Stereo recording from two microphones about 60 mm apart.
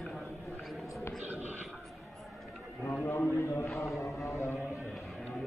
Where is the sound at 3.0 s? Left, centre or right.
Left.